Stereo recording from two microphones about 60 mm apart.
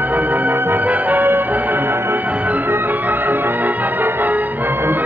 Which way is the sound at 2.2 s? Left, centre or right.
Right.